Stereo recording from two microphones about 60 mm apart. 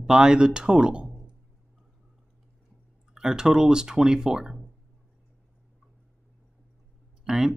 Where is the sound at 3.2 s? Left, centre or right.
Centre.